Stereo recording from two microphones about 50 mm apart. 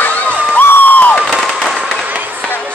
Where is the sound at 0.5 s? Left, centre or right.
Left.